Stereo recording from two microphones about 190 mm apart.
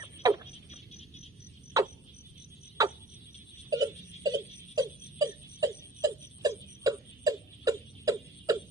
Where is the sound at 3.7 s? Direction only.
20° right (ahead or behind).